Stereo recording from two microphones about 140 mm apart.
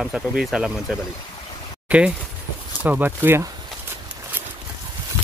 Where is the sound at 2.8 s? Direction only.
15° right (ahead or behind).